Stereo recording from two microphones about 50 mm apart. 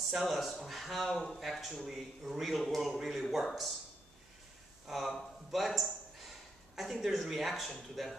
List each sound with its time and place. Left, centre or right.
0.1 s a man's voice: centre
4.8 s a man's voice: centre